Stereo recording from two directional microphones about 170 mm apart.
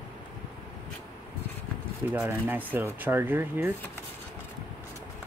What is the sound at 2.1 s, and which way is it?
Speech, 10° right (ahead or behind).